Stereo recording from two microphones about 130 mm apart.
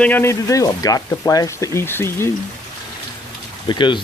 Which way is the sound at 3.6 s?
35° left (ahead or behind).